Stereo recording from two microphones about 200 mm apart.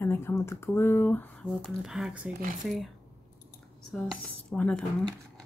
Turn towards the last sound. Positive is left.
turn(degrees=5)  # may be behind; listen again after turning